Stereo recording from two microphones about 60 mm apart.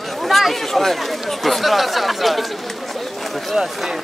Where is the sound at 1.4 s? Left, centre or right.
Centre.